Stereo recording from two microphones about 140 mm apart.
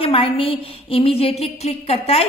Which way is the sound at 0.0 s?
40° left (ahead or behind).